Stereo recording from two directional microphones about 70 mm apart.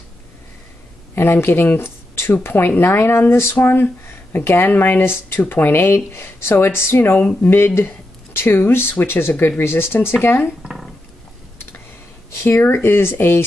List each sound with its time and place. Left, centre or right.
1.1 s speech: left
12.4 s speech: left